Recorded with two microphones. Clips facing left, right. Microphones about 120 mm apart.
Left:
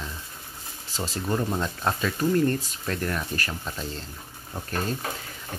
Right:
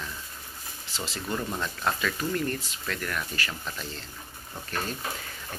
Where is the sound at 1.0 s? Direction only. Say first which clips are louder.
Left 5 dB; 30° left (ahead or behind).